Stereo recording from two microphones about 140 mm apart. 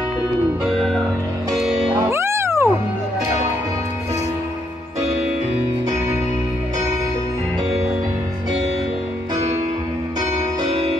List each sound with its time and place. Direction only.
0.7 s music: centre (ahead or behind)
2.0 s music: 20° right (ahead or behind)